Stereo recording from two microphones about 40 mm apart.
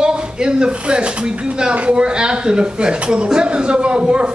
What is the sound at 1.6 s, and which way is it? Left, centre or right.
A man's voice, right.